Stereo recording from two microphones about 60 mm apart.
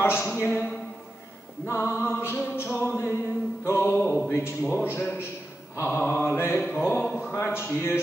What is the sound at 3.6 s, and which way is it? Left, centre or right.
Music, left.